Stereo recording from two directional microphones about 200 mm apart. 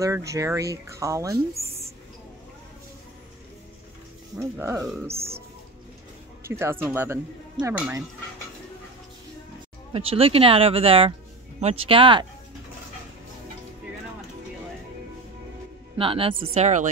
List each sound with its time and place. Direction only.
0.0 s speech: 15° right (ahead or behind)
4.4 s speech: 15° right (ahead or behind)
5.1 s speech: 30° right (ahead or behind)
6.4 s speech: 10° right (ahead or behind)
9.9 s speech: 30° right (ahead or behind)
16.0 s speech: 25° right (ahead or behind)